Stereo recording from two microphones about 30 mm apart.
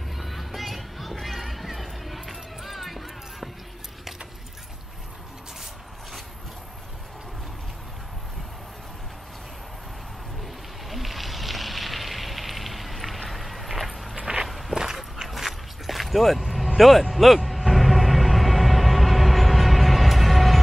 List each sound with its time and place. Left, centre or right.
0.2 s music: centre
10.4 s a sound: centre
13.3 s horse: centre
14.7 s walk: centre
15.2 s a sound: centre
17.1 s music: centre